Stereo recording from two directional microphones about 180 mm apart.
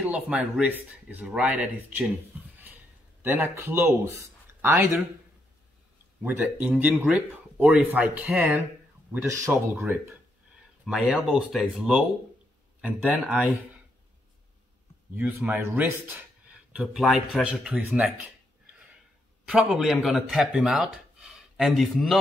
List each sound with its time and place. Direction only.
0.0 s speech: 10° right (ahead or behind)
3.2 s speech: 15° right (ahead or behind)
6.2 s speech: 10° right (ahead or behind)
10.9 s speech: 5° right (ahead or behind)
15.1 s speech: 5° right (ahead or behind)
19.5 s speech: 5° right (ahead or behind)